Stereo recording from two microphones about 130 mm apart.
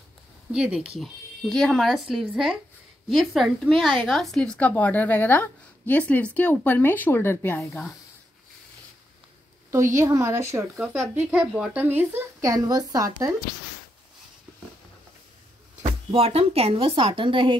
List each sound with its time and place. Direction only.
0.5 s speech: 5° right (ahead or behind); by 7.6 s 15° left (ahead or behind)
9.7 s a woman's voice: 20° right (ahead or behind)
11.2 s a woman's voice: 5° right (ahead or behind); by 13.3 s 25° right (ahead or behind)
16.1 s a woman's voice: 45° right (ahead or behind)